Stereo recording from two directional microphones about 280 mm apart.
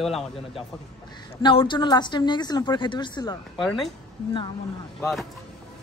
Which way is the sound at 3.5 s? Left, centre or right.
Centre.